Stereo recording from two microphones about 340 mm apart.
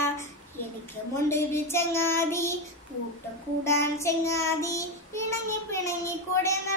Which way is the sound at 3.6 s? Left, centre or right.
Centre.